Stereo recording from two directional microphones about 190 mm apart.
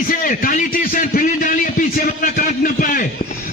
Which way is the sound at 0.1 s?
45° left (ahead or behind).